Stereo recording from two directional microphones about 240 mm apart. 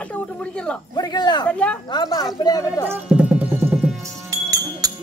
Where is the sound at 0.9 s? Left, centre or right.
Centre.